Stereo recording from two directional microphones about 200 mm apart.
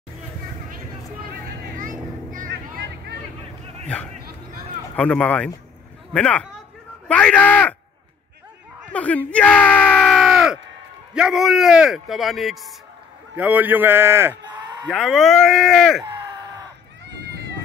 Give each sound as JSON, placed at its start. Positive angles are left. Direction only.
{"t": 1.3, "sound": "vehicle", "side_deg": -45}
{"t": 3.8, "sound": "a man's voice", "side_deg": 5}
{"t": 8.9, "sound": "a man's voice", "side_deg": 5}
{"t": 14.9, "sound": "a man's voice", "side_deg": 0}
{"t": 16.0, "sound": "a sound", "side_deg": -20}